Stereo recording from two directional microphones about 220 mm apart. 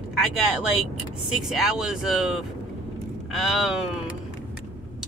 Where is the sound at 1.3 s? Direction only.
Centre (ahead or behind).